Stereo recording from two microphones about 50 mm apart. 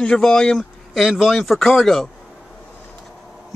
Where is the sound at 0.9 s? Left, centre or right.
Centre.